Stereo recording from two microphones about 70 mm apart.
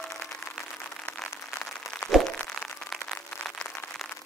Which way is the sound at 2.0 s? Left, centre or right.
Left.